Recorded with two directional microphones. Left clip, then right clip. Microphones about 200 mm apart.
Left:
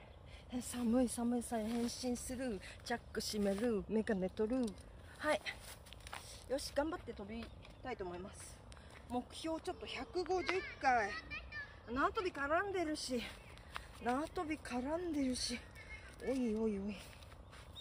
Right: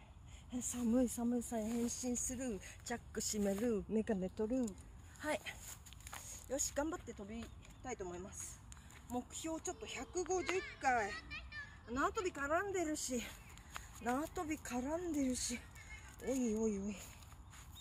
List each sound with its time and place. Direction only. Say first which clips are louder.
0.5 s a woman's voice: even; 10° left (ahead or behind)
1.7 s speech: left 1 dB; 10° left (ahead or behind)
6.0 s speech: left 3 dB; centre (ahead or behind)
11.1 s a sound: left 2 dB; 50° right (ahead or behind)
11.9 s speech: left 1 dB; centre (ahead or behind)